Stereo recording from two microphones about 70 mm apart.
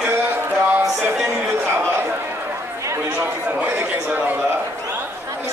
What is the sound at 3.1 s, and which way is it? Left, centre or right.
Chatter, right.